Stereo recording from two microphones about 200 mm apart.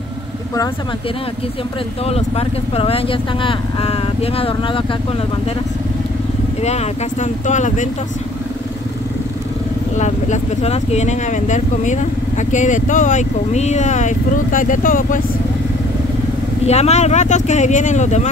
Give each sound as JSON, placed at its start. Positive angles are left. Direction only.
{"t": 2.0, "sound": "speech", "side_deg": 30}
{"t": 6.6, "sound": "speech", "side_deg": 35}
{"t": 9.9, "sound": "speech", "side_deg": 35}
{"t": 16.6, "sound": "speech", "side_deg": 30}